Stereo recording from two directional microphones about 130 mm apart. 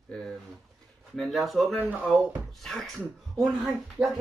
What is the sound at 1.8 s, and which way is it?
Speech, 10° right (ahead or behind).